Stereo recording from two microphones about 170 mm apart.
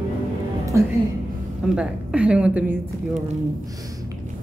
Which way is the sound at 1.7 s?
5° right (ahead or behind).